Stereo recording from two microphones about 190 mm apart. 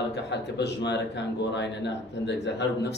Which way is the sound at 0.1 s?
65° left (ahead or behind).